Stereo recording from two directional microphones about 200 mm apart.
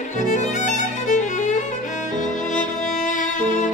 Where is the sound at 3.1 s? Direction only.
40° left (ahead or behind).